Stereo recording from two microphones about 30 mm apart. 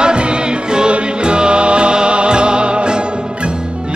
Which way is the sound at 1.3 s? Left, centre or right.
Right.